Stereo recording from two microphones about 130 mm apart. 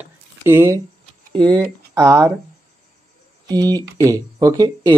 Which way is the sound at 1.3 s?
30° right (ahead or behind).